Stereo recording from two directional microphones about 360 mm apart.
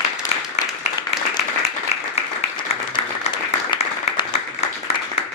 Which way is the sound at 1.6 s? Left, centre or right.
Centre.